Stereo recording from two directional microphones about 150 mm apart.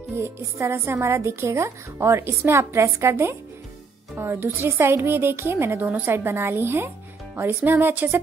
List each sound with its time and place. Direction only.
0.1 s speech: 15° right (ahead or behind)